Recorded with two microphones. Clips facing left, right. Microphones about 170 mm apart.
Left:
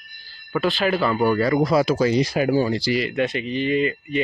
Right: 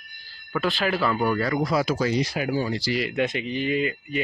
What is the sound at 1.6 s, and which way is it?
Speech, 30° left (ahead or behind).